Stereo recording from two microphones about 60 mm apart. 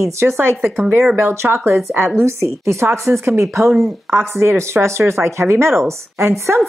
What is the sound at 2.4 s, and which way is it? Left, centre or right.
Speech, right.